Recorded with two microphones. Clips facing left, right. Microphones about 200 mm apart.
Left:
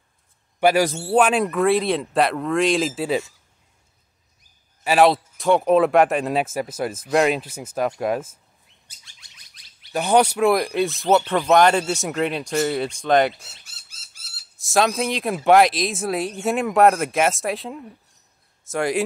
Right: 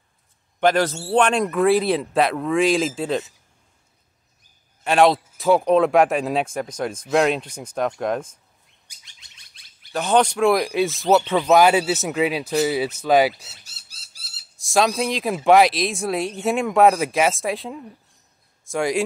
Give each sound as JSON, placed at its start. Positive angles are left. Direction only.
{"t": 0.6, "sound": "speech", "side_deg": 10}
{"t": 4.8, "sound": "speech", "side_deg": 0}
{"t": 8.8, "sound": "bird", "side_deg": -20}
{"t": 9.6, "sound": "a sound", "side_deg": -25}
{"t": 9.9, "sound": "speech", "side_deg": 10}
{"t": 13.7, "sound": "a sound", "side_deg": -35}
{"t": 14.6, "sound": "speech", "side_deg": 0}